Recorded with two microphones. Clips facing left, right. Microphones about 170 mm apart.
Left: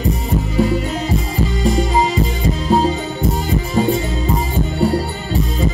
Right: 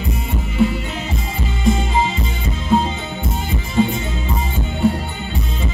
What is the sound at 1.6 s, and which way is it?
Music, 40° left (ahead or behind).